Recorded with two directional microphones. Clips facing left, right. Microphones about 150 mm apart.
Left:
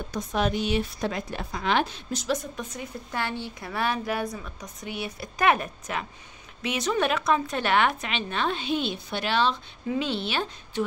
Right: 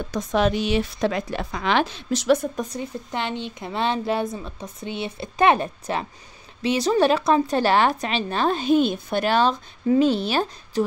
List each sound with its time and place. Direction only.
0.1 s a woman's voice: 90° right; by 2.5 s 60° right (ahead or behind)
2.5 s a woman's voice: 35° right (ahead or behind)
3.1 s a woman's voice: 20° right (ahead or behind); by 10.8 s 40° right (ahead or behind)